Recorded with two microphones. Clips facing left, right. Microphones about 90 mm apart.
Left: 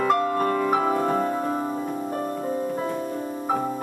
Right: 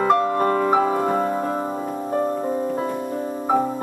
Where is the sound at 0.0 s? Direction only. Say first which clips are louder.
Right 3 dB; 30° right (ahead or behind).